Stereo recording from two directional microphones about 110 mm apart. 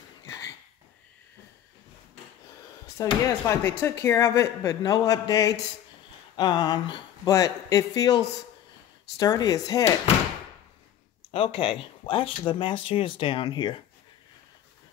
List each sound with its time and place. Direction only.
3.3 s a man's voice: 25° left (ahead or behind)
11.3 s speech: 55° left (ahead or behind)